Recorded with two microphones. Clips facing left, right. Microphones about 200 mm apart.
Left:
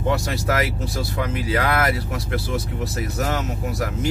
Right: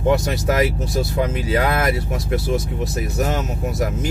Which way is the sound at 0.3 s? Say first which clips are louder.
Right 4 dB; 20° right (ahead or behind).